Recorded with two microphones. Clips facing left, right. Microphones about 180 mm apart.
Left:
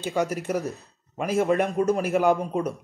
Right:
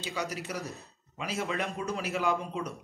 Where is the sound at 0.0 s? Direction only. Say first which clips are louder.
Left 9 dB; 50° left (ahead or behind).